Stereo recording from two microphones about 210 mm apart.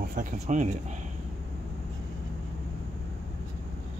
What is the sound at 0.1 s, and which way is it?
Speech, 35° right (ahead or behind).